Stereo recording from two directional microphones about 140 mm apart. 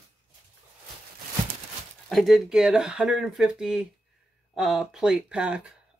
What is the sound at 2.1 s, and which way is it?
Speech, centre (ahead or behind).